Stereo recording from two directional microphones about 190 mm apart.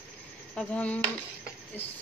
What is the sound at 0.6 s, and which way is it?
Speech, 5° left (ahead or behind).